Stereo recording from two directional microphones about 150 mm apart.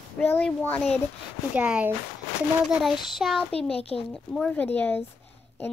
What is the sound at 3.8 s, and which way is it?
Speech, 40° left (ahead or behind).